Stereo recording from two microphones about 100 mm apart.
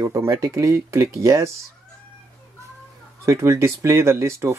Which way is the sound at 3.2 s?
30° right (ahead or behind).